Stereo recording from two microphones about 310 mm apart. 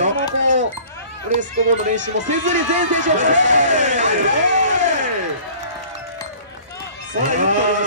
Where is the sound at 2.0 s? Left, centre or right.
Right.